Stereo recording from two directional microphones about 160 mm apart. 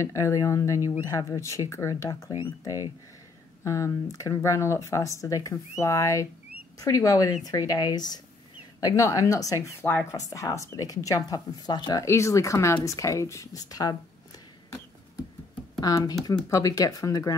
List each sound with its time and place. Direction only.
0.0 s speech: 20° left (ahead or behind)
15.8 s speech: 25° left (ahead or behind)